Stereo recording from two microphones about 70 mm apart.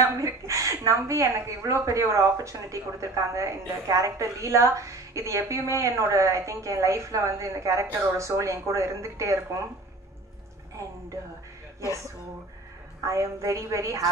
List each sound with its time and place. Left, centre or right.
0.0 s a woman's voice: right
13.0 s a woman's voice: right